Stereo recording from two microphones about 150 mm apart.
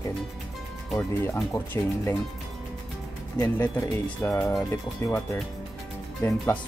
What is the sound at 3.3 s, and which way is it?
Speech, 25° left (ahead or behind).